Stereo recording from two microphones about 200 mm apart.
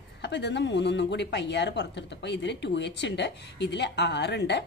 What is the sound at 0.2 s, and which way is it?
A woman's voice, 60° left (ahead or behind).